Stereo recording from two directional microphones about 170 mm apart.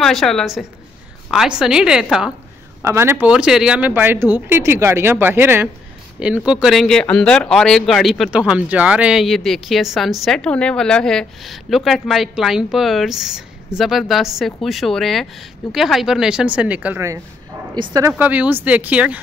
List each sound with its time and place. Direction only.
0.0 s speech: centre (ahead or behind)
2.8 s speech: 15° right (ahead or behind)
17.7 s speech: 30° right (ahead or behind)
18.1 s speech: 10° right (ahead or behind)